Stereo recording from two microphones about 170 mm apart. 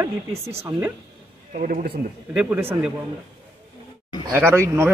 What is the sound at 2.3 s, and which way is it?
Speech, 10° right (ahead or behind).